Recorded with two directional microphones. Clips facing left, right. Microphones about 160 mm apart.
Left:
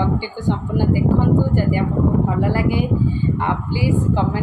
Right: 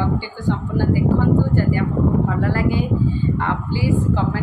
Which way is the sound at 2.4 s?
15° left (ahead or behind).